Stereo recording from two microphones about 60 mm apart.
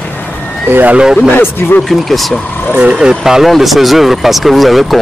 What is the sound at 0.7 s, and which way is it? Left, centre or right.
Speech, right.